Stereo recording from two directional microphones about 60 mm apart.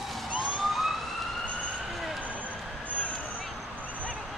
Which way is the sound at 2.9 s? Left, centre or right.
Left.